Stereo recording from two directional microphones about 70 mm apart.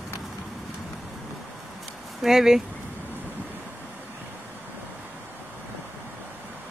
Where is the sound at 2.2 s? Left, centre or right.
Centre.